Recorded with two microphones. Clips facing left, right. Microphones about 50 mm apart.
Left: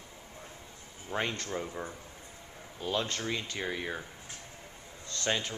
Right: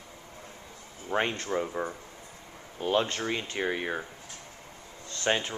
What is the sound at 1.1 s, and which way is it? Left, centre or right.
Speech, right.